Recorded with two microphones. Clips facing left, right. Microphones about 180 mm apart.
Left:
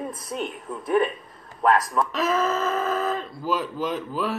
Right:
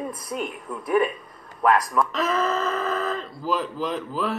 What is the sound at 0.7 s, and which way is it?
Speech, centre (ahead or behind).